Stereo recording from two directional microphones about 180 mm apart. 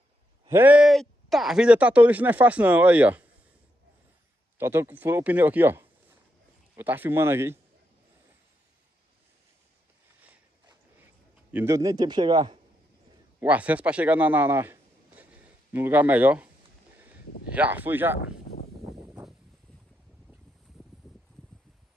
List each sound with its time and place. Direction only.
0.5 s speech: 10° right (ahead or behind)
4.6 s speech: 10° right (ahead or behind)
11.5 s a man's voice: 15° right (ahead or behind)
13.4 s speech: 10° right (ahead or behind)